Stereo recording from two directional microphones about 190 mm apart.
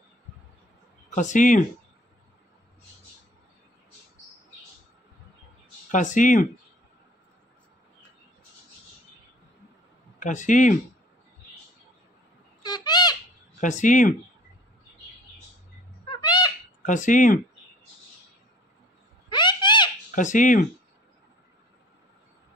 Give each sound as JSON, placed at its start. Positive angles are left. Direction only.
{"t": 1.1, "sound": "speech", "side_deg": 40}
{"t": 5.9, "sound": "speech", "side_deg": 40}
{"t": 10.1, "sound": "speech", "side_deg": 40}
{"t": 12.6, "sound": "bird", "side_deg": 20}
{"t": 13.6, "sound": "speech", "side_deg": 40}
{"t": 16.1, "sound": "bird", "side_deg": 20}
{"t": 16.8, "sound": "speech", "side_deg": 40}
{"t": 19.2, "sound": "a sound", "side_deg": 25}
{"t": 20.2, "sound": "speech", "side_deg": 40}